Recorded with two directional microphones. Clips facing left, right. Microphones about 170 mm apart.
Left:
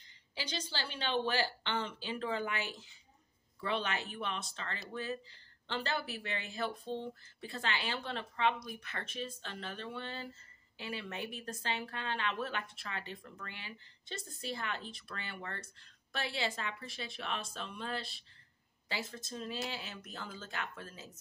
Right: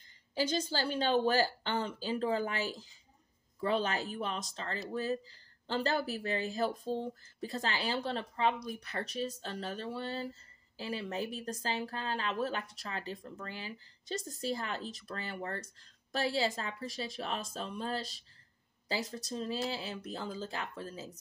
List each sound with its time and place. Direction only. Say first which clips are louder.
0.3 s speech: right 9 dB; 45° right (ahead or behind)